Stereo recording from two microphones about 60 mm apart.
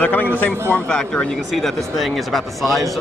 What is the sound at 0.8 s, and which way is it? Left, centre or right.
Speech, centre.